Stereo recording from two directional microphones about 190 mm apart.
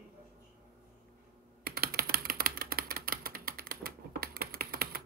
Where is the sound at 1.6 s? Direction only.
55° right (ahead or behind).